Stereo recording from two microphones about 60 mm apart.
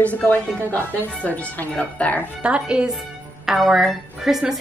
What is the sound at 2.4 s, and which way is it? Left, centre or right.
Speech, centre.